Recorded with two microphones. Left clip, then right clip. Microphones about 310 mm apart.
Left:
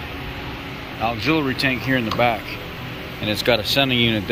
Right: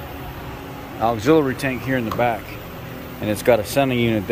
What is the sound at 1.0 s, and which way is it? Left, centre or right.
Speech, centre.